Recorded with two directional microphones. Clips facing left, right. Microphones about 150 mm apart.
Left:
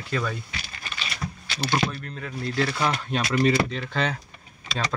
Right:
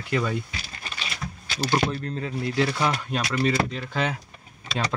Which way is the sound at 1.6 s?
10° right (ahead or behind).